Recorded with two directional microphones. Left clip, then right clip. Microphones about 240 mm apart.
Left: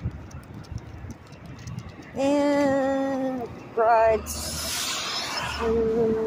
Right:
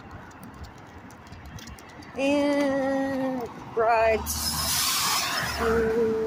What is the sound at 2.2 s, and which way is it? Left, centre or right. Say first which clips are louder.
Female singing: left 2 dB; centre.